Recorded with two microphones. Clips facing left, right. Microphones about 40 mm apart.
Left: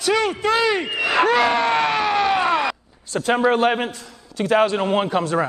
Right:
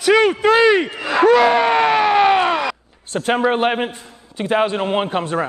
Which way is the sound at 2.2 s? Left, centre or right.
Right.